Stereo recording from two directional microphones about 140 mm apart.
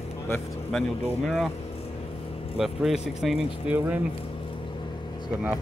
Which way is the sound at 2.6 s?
Centre (ahead or behind).